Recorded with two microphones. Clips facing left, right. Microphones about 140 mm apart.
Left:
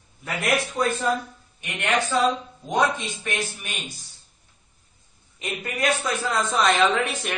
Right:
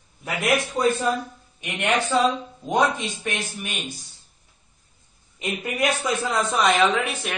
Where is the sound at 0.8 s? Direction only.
25° right (ahead or behind).